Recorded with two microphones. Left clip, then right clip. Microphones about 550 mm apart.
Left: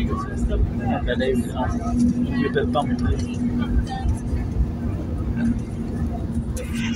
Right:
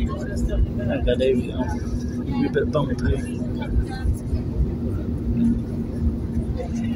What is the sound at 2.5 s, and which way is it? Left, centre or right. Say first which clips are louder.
Speech: even; right.